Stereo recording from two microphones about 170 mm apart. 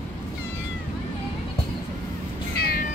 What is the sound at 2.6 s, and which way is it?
Music, 60° left (ahead or behind).